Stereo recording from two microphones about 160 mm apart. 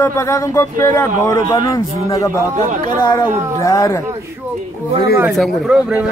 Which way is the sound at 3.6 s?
20° left (ahead or behind).